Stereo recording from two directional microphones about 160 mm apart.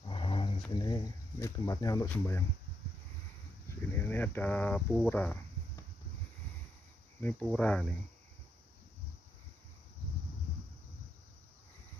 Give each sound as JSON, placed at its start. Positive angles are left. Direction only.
{"t": 0.0, "sound": "a sound", "side_deg": 35}
{"t": 0.7, "sound": "speech", "side_deg": 25}
{"t": 3.6, "sound": "speech", "side_deg": 15}
{"t": 7.2, "sound": "speech", "side_deg": 10}